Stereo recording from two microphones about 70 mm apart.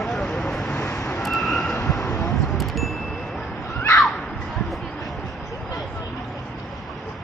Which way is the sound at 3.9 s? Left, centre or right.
Centre.